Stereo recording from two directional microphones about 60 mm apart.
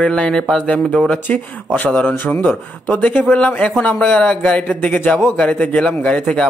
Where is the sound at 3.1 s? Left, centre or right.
Left.